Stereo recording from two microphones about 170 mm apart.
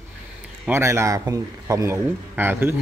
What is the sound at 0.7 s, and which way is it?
Speech, 15° right (ahead or behind).